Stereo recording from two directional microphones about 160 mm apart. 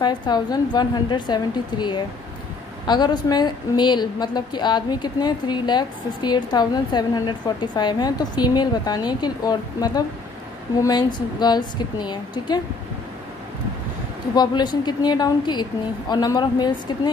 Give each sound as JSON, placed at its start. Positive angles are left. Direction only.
{"t": 0.0, "sound": "a woman's voice", "side_deg": 25}
{"t": 14.3, "sound": "a woman's voice", "side_deg": 25}